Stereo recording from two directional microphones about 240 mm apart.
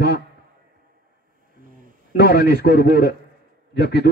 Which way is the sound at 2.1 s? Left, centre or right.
Left.